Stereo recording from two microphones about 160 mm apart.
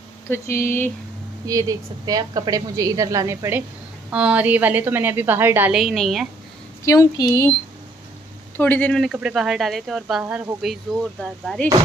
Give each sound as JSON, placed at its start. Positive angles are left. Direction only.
{"t": 0.3, "sound": "speech", "side_deg": 15}
{"t": 1.4, "sound": "a woman's voice", "side_deg": -20}
{"t": 5.8, "sound": "speech", "side_deg": 0}
{"t": 6.9, "sound": "speech", "side_deg": 20}
{"t": 8.5, "sound": "speech", "side_deg": 10}
{"t": 9.0, "sound": "speech", "side_deg": -5}